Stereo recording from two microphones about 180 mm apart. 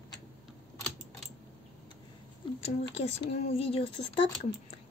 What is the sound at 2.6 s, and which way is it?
Speech, 35° left (ahead or behind).